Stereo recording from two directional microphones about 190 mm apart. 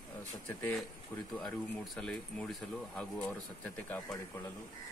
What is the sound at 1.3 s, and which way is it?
Speech, centre (ahead or behind).